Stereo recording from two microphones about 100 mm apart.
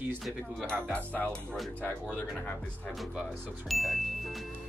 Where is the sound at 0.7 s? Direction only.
10° left (ahead or behind).